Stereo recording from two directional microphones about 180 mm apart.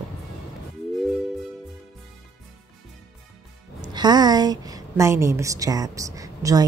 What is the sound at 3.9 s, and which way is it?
Speech, 25° right (ahead or behind).